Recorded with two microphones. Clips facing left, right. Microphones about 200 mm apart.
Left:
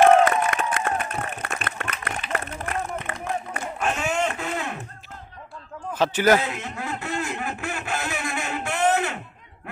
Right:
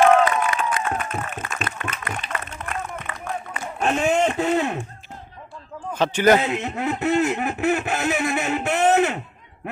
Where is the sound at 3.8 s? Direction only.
35° right (ahead or behind).